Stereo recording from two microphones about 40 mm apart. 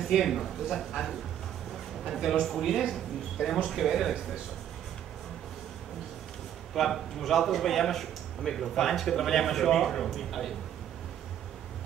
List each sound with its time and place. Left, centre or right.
0.0 s a man's voice: centre
2.4 s a man's voice: centre
6.7 s a man's voice: centre